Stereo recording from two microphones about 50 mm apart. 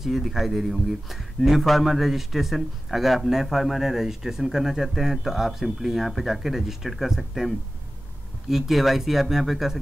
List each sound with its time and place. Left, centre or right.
0.0 s speech: centre